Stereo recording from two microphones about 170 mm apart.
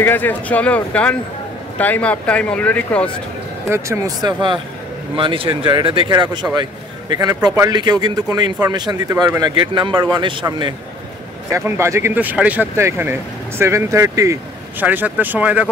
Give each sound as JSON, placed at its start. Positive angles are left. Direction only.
{"t": 0.0, "sound": "speech", "side_deg": 10}
{"t": 3.7, "sound": "a man's voice", "side_deg": -15}